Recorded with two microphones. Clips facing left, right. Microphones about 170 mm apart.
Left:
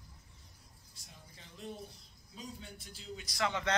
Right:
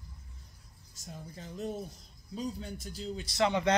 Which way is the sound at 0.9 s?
45° right (ahead or behind).